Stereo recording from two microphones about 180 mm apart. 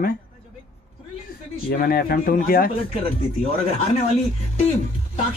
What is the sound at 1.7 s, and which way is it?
Speech, 55° left (ahead or behind).